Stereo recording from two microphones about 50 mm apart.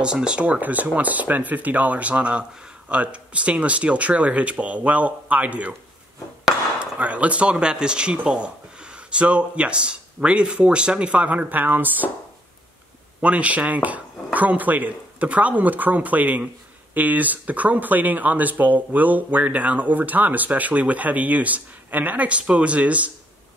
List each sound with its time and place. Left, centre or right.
0.0 s speech: centre
0.6 s speech: right
6.8 s speech: right
13.2 s speech: right